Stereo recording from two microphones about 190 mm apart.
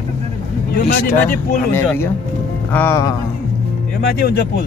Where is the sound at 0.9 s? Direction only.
50° left (ahead or behind).